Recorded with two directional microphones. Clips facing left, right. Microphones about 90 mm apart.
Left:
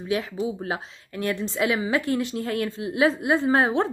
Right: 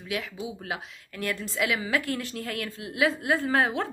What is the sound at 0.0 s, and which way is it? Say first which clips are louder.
Speech: left 7 dB; 30° left (ahead or behind).